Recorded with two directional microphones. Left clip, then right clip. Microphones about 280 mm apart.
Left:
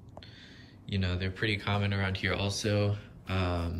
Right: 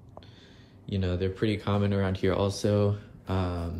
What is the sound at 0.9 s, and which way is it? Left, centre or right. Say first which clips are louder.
Speech: right 5 dB; centre.